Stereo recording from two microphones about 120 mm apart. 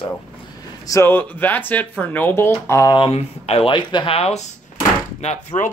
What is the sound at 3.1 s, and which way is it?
Speech, 60° left (ahead or behind).